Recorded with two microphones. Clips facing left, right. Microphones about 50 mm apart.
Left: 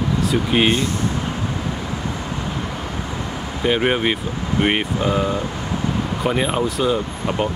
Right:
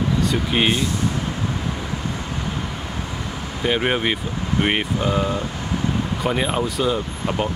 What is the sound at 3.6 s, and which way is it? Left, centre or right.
Speech, centre.